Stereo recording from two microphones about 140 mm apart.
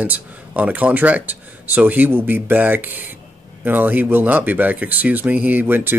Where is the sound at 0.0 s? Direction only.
10° right (ahead or behind).